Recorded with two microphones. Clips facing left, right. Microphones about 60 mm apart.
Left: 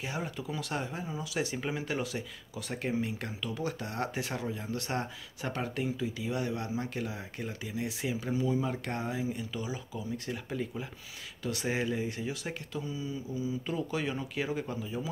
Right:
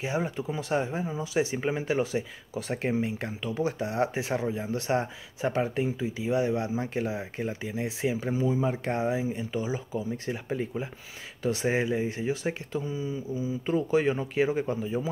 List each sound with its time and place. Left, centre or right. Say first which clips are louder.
0.0 s speech: right 7 dB; right